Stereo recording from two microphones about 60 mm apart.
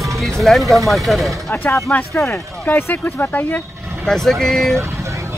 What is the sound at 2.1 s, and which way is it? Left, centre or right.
Speech, left.